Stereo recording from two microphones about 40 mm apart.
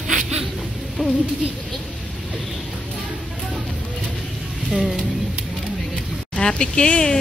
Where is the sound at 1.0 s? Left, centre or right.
Centre.